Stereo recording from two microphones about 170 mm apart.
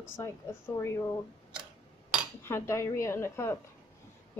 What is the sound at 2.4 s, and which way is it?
Speech, 15° left (ahead or behind).